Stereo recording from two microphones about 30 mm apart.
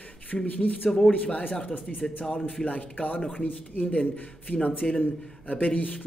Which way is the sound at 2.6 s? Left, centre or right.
Left.